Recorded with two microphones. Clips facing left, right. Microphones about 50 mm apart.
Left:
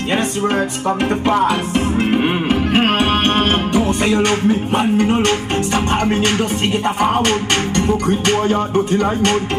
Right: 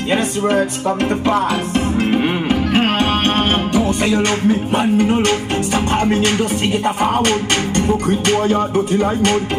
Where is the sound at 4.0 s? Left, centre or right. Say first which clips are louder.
Left 1 dB; centre.